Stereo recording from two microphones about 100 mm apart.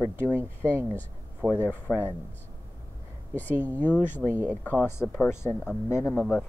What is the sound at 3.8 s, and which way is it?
Speech, 20° left (ahead or behind).